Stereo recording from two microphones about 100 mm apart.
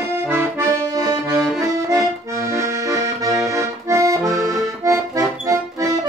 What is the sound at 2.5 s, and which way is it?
Accordion, 30° right (ahead or behind).